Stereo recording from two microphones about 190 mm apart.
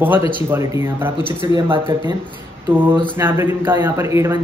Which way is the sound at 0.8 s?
10° right (ahead or behind).